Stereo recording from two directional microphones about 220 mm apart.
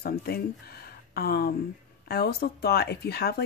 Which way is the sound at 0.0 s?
45° left (ahead or behind).